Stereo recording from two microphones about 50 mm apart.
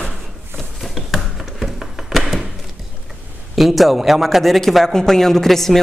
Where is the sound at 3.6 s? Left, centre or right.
Centre.